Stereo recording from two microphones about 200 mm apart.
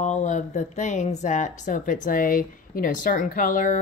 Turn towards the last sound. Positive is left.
turn(degrees=40)  # may be behind; listen again after turning